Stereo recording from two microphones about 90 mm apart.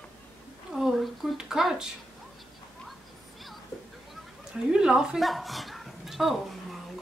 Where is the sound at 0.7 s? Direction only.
Centre (ahead or behind).